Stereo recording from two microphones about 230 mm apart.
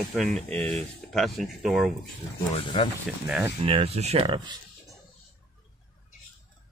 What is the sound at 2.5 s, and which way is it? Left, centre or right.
Speech, left.